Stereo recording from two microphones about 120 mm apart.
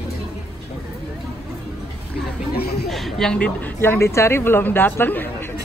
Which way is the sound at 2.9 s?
Centre (ahead or behind).